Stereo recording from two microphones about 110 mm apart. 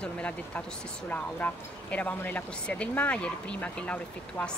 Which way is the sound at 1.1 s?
15° left (ahead or behind).